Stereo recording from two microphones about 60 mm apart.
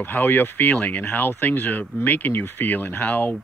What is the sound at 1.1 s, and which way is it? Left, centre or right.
Speech, left.